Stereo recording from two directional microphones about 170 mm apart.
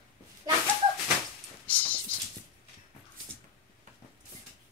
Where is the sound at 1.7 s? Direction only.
10° left (ahead or behind).